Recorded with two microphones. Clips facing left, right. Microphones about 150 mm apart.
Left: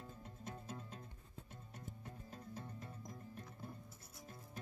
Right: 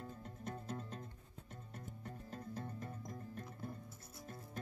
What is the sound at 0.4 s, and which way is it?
Music, 60° right (ahead or behind).